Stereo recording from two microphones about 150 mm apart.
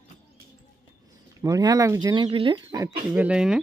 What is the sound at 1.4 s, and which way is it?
Speech, 25° right (ahead or behind).